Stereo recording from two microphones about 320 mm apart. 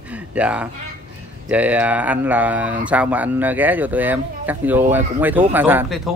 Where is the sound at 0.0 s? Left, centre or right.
Centre.